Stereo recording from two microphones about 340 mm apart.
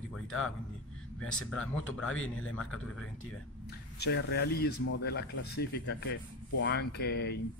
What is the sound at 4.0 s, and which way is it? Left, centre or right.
Speech, left.